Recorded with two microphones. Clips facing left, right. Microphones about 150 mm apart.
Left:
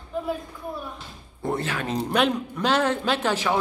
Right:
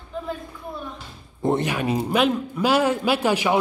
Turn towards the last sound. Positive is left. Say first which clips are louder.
# right 3 dB
turn(degrees=-15)  # may be behind; listen again after turning